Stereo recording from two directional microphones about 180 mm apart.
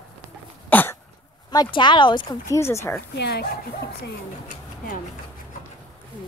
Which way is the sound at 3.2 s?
65° left (ahead or behind).